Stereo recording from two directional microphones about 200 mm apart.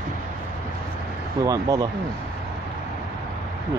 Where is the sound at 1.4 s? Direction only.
20° right (ahead or behind).